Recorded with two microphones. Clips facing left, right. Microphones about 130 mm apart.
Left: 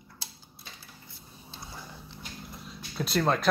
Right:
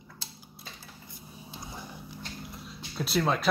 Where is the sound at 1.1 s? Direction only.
20° right (ahead or behind).